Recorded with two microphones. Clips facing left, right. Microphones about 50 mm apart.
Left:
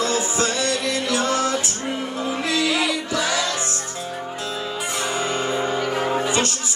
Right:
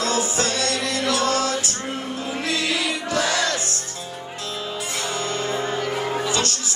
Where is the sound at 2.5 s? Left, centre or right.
Right.